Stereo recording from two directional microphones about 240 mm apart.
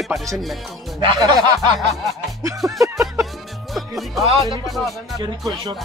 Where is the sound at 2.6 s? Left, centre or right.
Centre.